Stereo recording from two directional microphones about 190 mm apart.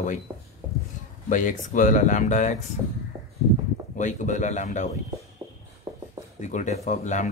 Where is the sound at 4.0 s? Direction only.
40° left (ahead or behind).